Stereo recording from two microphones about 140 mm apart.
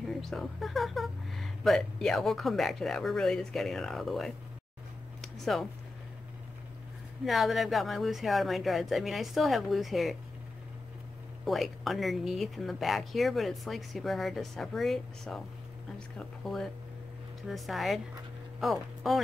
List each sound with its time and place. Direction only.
0.0 s speech: centre (ahead or behind)
5.2 s a sound: centre (ahead or behind)
7.2 s speech: centre (ahead or behind)
11.4 s speech: centre (ahead or behind)